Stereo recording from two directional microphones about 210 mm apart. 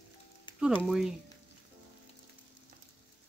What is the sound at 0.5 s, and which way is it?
Music, 20° left (ahead or behind).